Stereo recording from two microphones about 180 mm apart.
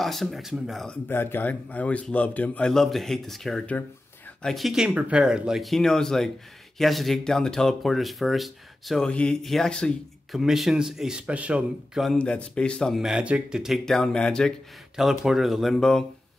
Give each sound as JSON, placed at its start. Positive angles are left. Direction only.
{"t": 0.0, "sound": "speech", "side_deg": 0}
{"t": 1.0, "sound": "a man's voice", "side_deg": 10}